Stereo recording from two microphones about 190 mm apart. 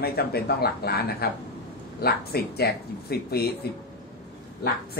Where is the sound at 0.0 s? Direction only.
55° left (ahead or behind).